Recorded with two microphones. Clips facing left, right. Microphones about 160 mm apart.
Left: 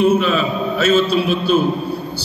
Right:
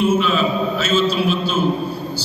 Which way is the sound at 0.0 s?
60° left (ahead or behind).